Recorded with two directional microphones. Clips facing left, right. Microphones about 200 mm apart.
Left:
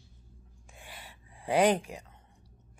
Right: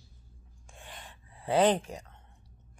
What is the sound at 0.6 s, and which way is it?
Gasp, 10° left (ahead or behind).